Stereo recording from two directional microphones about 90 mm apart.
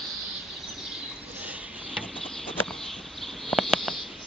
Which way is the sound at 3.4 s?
5° left (ahead or behind).